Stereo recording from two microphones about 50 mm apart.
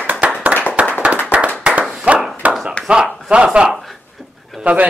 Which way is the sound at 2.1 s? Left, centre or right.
Right.